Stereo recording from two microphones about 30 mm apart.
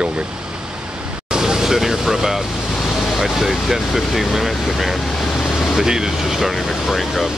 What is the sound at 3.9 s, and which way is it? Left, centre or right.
Speech, centre.